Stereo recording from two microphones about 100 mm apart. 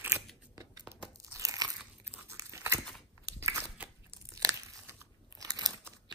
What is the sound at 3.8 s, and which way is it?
Crunch, 15° right (ahead or behind).